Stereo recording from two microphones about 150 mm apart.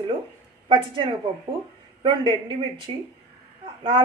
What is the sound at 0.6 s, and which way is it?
Speech, 35° right (ahead or behind).